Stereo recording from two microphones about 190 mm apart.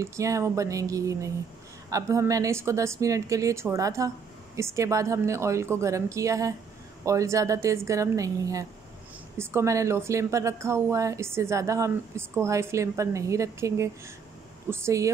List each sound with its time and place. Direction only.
0.0 s speech: 15° right (ahead or behind)